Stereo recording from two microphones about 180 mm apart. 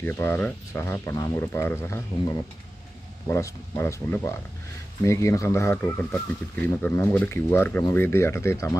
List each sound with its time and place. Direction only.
0.0 s speech: 10° left (ahead or behind)